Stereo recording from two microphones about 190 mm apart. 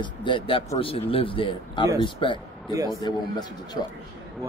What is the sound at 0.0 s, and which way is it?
A man's voice, 25° left (ahead or behind).